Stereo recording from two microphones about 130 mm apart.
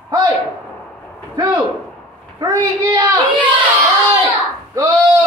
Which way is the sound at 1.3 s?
35° right (ahead or behind).